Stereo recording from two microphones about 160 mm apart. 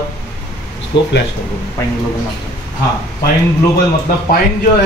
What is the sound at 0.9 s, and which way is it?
Speech, 90° left.